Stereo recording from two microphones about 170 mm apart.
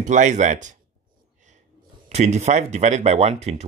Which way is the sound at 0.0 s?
45° right (ahead or behind).